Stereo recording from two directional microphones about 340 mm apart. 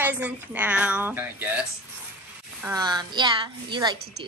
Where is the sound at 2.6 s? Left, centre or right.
Centre.